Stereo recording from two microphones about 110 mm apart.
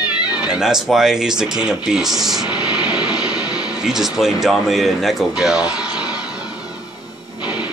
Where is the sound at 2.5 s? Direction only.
40° left (ahead or behind).